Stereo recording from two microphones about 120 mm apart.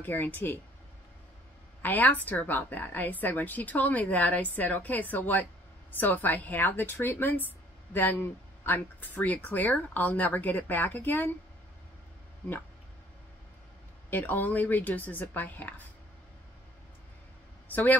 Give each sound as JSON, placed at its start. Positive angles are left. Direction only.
{"t": 0.0, "sound": "a woman's voice", "side_deg": 15}
{"t": 1.8, "sound": "a woman's voice", "side_deg": 15}
{"t": 12.4, "sound": "a woman's voice", "side_deg": 15}
{"t": 14.1, "sound": "a woman's voice", "side_deg": 15}
{"t": 17.6, "sound": "a man's voice", "side_deg": 15}